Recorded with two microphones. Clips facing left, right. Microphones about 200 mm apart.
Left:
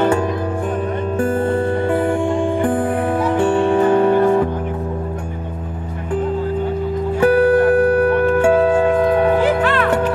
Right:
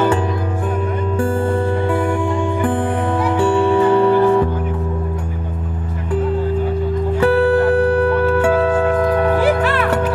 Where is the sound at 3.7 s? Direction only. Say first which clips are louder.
Even; 50° left (ahead or behind).